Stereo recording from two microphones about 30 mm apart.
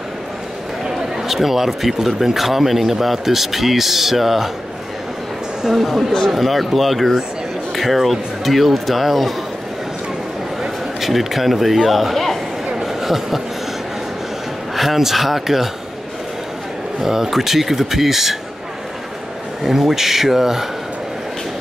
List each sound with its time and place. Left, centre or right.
0.8 s basketball bounce: centre
1.3 s a man's voice: centre
5.8 s speech: centre
11.0 s a man's voice: centre
12.8 s a sound: centre
14.8 s a man's voice: centre
17.0 s a man's voice: centre
19.6 s a man's voice: centre